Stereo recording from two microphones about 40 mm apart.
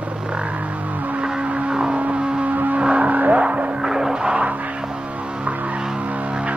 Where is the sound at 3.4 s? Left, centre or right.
Right.